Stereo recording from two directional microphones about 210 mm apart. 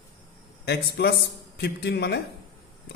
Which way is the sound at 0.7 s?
50° left (ahead or behind).